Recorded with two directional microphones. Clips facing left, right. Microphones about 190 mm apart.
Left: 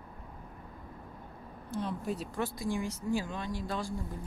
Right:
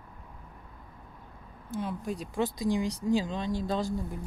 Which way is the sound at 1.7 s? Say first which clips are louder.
Right 1 dB; centre (ahead or behind).